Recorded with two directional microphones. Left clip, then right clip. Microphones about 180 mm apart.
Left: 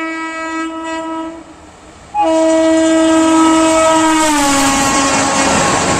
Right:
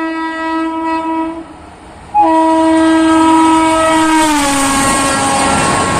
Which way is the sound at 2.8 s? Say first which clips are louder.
Right 1 dB; 25° left (ahead or behind).